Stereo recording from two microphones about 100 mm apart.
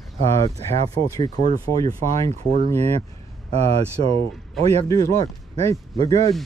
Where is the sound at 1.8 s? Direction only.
30° left (ahead or behind).